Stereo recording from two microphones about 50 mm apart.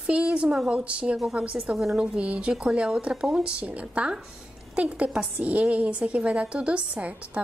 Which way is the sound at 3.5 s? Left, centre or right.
Right.